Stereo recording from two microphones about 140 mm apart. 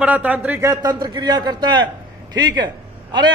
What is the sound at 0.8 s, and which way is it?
A man's voice, 30° right (ahead or behind).